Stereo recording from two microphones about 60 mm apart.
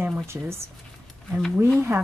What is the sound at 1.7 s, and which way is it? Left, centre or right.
Speech, right.